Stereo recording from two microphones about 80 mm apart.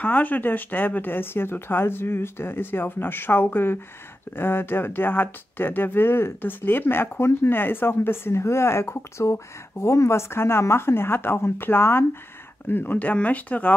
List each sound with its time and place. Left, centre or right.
0.0 s speech: left